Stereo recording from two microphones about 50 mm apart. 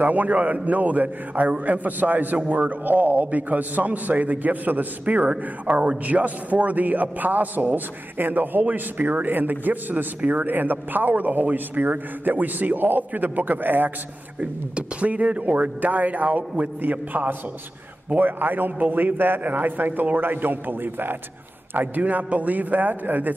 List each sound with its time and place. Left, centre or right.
0.0 s a man's voice: right
14.4 s a man's voice: right